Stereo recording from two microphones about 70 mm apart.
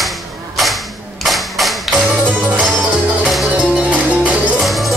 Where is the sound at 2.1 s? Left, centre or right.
Centre.